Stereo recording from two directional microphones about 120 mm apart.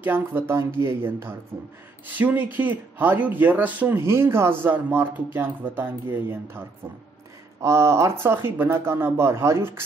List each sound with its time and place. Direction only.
0.0 s speech: 15° right (ahead or behind)
7.6 s speech: 25° right (ahead or behind)